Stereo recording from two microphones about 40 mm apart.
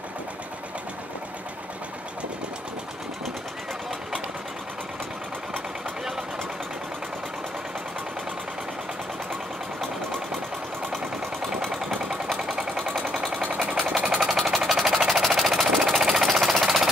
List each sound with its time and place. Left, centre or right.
12.4 s sewing machine: centre
13.1 s a sound: centre
13.4 s sewing machine: right
14.1 s sewing machine: centre